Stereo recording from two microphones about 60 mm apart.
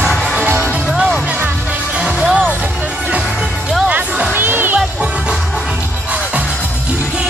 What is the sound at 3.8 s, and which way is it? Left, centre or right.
Music, centre.